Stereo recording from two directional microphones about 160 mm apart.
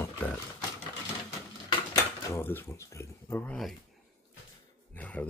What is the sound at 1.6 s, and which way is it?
Speech, 20° left (ahead or behind).